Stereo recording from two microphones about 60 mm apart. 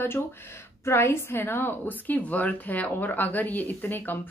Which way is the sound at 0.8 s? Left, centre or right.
Left.